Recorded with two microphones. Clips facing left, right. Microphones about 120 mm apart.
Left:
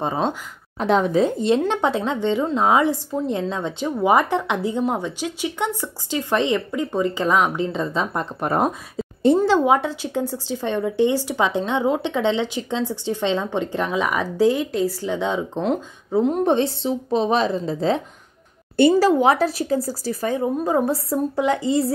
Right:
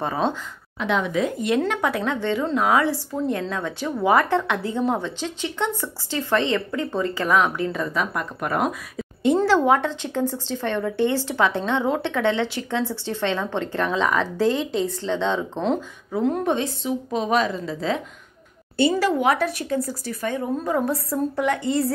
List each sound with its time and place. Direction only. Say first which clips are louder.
0.0 s a woman's voice: left 1 dB; 20° left (ahead or behind)
0.7 s a woman's voice: left 5 dB; 35° left (ahead or behind)
9.4 s a woman's voice: left 1 dB; 15° left (ahead or behind)
16.1 s speech: left 3 dB; 20° left (ahead or behind)
16.4 s speech: left 4 dB; 35° left (ahead or behind)